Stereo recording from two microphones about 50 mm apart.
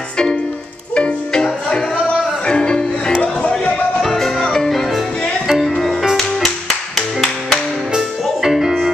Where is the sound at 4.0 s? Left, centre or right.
Centre.